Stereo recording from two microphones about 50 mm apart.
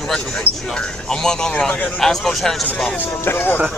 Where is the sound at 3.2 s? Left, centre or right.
Left.